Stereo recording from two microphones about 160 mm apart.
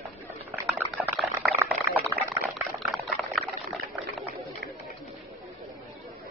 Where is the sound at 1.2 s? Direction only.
10° right (ahead or behind).